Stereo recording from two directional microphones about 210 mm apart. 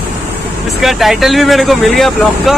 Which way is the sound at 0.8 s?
Centre (ahead or behind).